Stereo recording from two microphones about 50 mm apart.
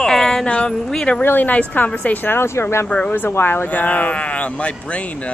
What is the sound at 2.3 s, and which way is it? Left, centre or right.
Speech, left.